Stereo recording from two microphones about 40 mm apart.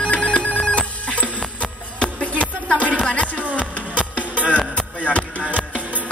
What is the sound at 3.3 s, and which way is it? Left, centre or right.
Music, right.